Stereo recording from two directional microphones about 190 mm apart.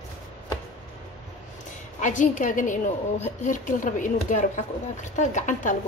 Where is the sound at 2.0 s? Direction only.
40° left (ahead or behind).